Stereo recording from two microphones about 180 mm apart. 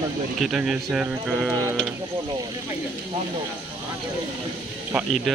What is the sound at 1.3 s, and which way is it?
Speech, 5° left (ahead or behind).